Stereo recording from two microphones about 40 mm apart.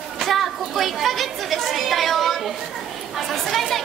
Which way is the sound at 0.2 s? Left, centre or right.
Centre.